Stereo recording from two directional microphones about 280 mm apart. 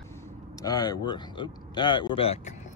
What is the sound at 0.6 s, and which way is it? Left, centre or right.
Speech, centre.